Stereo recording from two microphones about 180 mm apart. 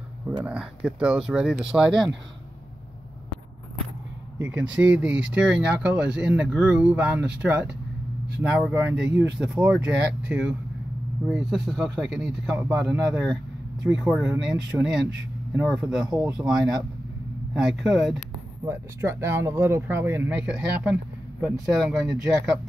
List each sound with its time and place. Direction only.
0.5 s speech: 5° right (ahead or behind)
4.4 s speech: 5° right (ahead or behind)
12.7 s speech: 20° right (ahead or behind)
13.0 s speech: centre (ahead or behind)
18.7 s speech: 15° right (ahead or behind)